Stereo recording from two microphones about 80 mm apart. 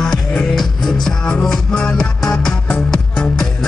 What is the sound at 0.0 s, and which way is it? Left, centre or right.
Music, centre.